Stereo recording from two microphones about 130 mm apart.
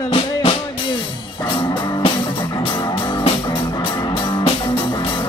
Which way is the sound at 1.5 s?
40° left (ahead or behind).